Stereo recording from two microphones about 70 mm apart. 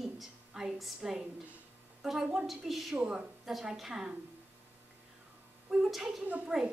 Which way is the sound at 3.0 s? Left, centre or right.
Centre.